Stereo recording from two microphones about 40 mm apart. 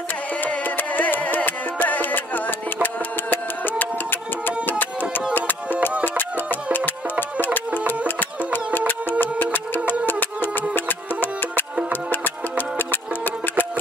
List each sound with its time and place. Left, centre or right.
0.7 s music: left
6.0 s music: left
9.2 s music: left